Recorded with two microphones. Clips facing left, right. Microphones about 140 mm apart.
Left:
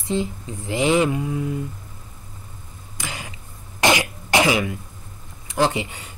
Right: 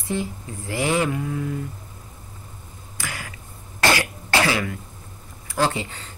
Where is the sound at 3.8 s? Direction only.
20° left (ahead or behind).